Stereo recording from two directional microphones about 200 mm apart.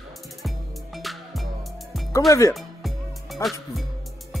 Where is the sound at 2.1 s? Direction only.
15° left (ahead or behind).